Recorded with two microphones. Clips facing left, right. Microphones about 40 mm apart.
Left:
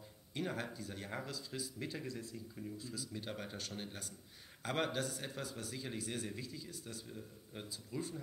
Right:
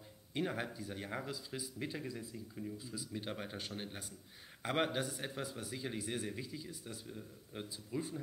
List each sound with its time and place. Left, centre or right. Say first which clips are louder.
0.3 s speech: right 2 dB; centre